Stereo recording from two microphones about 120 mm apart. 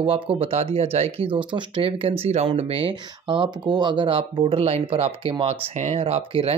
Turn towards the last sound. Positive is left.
turn(degrees=-50)  # may be behind; listen again after turning